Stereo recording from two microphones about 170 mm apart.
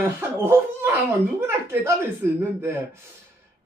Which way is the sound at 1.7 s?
15° right (ahead or behind).